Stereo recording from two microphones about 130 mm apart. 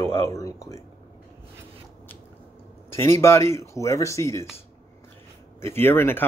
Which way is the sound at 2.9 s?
20° left (ahead or behind).